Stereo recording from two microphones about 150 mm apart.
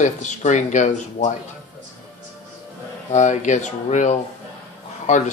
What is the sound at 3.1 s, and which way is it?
Speech, 50° left (ahead or behind).